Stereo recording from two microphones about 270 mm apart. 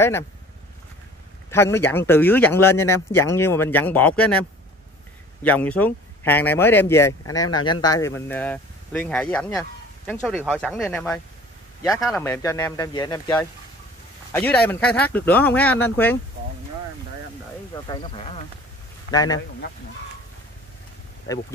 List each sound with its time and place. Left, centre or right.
1.5 s speech: centre
5.4 s speech: centre
17.7 s speech: centre
21.3 s speech: centre